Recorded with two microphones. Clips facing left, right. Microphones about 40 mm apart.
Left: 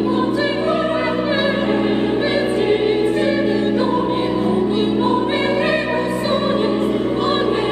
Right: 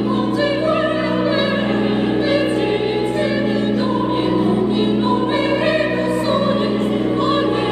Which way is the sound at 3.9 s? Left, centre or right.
Centre.